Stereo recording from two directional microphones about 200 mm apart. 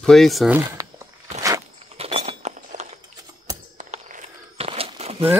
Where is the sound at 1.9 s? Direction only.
30° right (ahead or behind).